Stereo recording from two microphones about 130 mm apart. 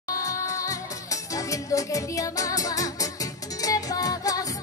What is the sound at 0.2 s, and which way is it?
Music, 25° left (ahead or behind).